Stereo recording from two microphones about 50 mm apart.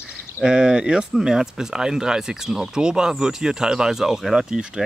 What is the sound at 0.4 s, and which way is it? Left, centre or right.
Speech, centre.